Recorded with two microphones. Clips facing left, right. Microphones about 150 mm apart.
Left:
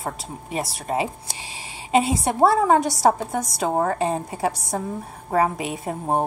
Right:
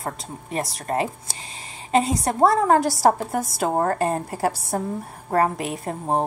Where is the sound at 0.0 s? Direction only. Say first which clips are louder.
Left 1 dB; centre (ahead or behind).